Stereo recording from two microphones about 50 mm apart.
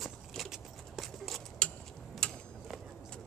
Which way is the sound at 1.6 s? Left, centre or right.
Centre.